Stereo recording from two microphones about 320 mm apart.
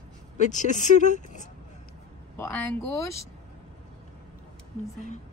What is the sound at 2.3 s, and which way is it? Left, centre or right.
Speech, centre.